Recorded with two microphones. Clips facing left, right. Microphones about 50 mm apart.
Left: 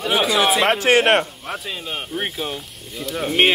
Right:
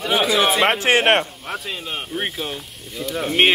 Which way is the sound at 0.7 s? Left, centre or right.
Right.